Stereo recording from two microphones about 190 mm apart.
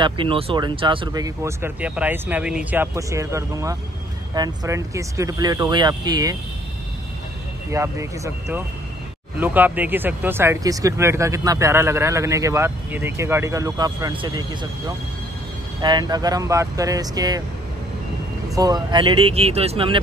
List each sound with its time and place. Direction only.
0.0 s speech: 25° right (ahead or behind)
7.7 s speech: 15° right (ahead or behind)
18.5 s speech: 20° right (ahead or behind)